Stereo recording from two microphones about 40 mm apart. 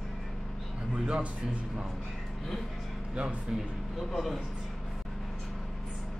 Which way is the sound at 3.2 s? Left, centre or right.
Centre.